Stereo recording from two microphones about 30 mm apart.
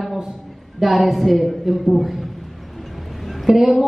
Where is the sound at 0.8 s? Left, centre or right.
Centre.